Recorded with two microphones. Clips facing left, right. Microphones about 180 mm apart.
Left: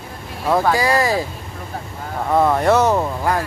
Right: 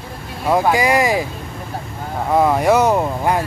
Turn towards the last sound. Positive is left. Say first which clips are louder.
# right 2 dB
turn(degrees=-15)  # may be behind; listen again after turning